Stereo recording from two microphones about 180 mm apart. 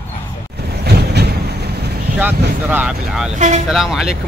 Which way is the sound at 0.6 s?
65° right (ahead or behind).